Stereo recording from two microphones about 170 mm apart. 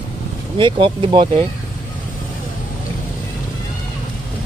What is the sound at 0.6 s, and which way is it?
Speech, 30° right (ahead or behind).